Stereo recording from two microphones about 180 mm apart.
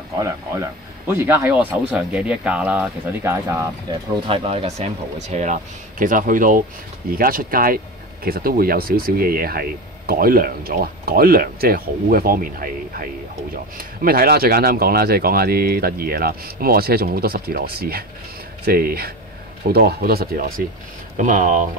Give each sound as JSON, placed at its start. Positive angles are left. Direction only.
{"t": 0.1, "sound": "speech", "side_deg": -15}
{"t": 4.3, "sound": "speech", "side_deg": -30}